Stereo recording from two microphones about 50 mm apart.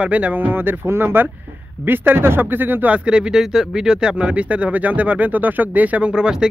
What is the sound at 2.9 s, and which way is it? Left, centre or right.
Speech, right.